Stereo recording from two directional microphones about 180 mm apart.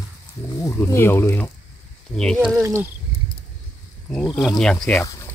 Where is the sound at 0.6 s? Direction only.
15° left (ahead or behind); by 2.6 s centre (ahead or behind).